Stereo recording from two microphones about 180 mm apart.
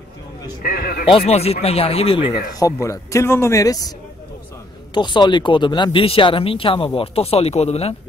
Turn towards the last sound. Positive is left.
turn(degrees=35)  # may be behind; listen again after turning